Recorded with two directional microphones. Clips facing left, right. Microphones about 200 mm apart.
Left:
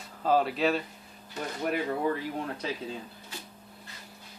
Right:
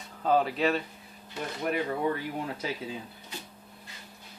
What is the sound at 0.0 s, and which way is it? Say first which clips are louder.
Speech: even; centre (ahead or behind).